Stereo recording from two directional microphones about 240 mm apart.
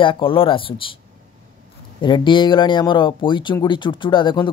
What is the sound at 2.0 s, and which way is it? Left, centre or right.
Speech, centre.